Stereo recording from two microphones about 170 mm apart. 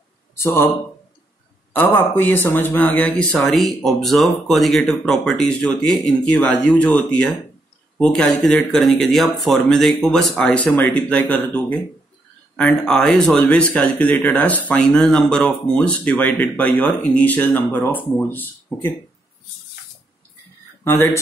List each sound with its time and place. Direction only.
0.4 s speech: 15° left (ahead or behind)
1.7 s speech: 10° left (ahead or behind)
20.8 s speech: 15° left (ahead or behind)